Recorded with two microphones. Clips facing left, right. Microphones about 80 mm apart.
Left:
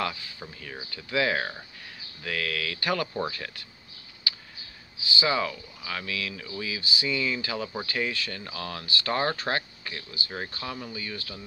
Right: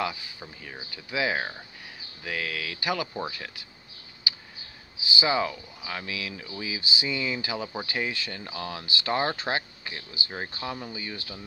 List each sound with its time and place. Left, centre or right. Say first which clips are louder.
0.0 s speech: even; centre
4.2 s tick: right 1 dB; centre
4.9 s speech: right 1 dB; centre